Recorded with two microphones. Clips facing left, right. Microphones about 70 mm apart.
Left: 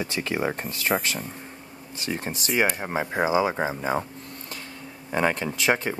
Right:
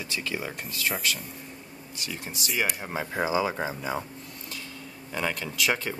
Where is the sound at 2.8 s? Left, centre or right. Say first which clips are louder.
Left 4 dB; left.